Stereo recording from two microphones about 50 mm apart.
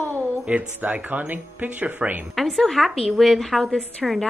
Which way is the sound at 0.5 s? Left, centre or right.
Right.